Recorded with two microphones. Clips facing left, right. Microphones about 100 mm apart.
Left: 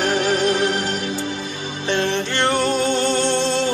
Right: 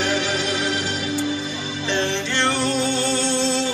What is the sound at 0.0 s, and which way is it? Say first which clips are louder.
Music: left 4 dB; 45° left (ahead or behind).